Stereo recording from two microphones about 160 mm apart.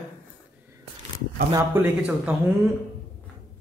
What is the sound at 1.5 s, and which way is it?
Speech, 15° right (ahead or behind).